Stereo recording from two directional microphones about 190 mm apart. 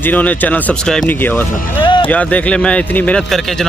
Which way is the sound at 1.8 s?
25° left (ahead or behind).